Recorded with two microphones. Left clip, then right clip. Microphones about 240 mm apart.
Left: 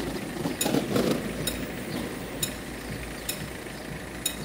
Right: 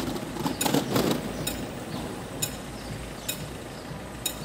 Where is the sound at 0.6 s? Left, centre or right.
Centre.